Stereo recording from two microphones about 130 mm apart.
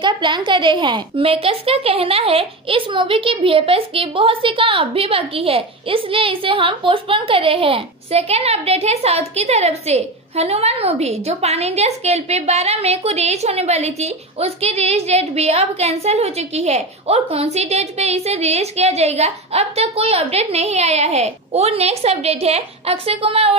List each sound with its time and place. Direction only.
0.0 s speech: 35° right (ahead or behind)